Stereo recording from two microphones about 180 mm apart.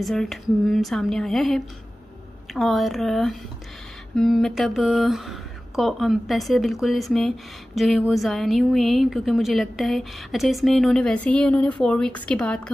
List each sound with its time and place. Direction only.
0.0 s speech: centre (ahead or behind)